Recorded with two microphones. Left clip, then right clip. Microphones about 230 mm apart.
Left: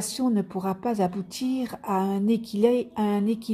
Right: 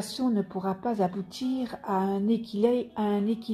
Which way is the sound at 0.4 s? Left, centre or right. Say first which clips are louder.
Left 2 dB; left.